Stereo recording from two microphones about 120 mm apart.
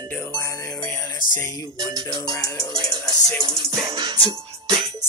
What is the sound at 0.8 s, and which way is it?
Music, 20° left (ahead or behind).